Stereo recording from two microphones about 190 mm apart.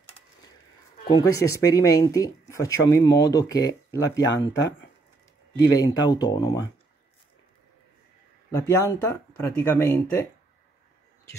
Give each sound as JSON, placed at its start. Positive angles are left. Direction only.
{"t": 1.0, "sound": "speech", "side_deg": 20}
{"t": 8.5, "sound": "speech", "side_deg": 15}